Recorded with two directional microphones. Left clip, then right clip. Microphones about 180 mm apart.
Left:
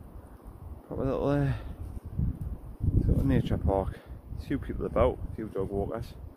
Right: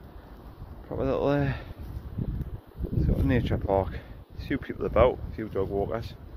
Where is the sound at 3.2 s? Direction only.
15° left (ahead or behind).